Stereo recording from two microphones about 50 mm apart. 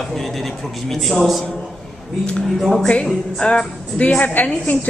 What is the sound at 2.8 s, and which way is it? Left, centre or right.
A woman's voice, left.